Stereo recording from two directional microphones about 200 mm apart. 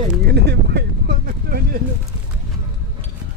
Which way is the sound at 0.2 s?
55° right (ahead or behind).